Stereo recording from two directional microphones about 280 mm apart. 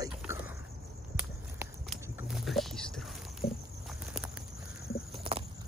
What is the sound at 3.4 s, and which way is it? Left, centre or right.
Walk, left.